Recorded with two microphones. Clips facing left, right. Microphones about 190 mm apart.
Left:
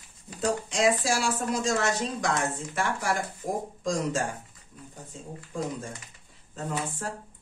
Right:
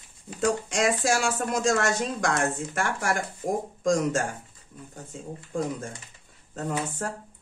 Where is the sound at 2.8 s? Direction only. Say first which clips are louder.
Even; 45° right (ahead or behind).